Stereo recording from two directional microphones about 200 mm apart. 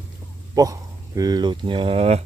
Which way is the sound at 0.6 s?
15° right (ahead or behind).